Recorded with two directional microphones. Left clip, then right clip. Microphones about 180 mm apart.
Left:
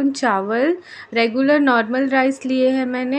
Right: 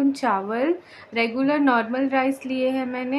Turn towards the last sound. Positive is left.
turn(degrees=20)  # may be behind; listen again after turning